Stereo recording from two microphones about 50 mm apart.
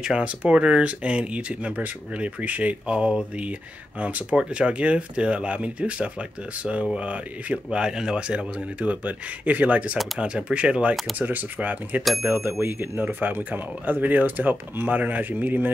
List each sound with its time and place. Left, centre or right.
0.0 s speech: centre
8.8 s speech: right
11.1 s speech: right
12.0 s speech: centre
12.3 s speech: right
13.0 s speech: right